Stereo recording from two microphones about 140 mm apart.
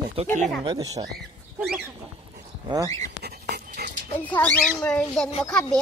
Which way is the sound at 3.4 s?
90° right.